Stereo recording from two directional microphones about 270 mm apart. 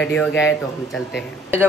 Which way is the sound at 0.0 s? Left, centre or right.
Centre.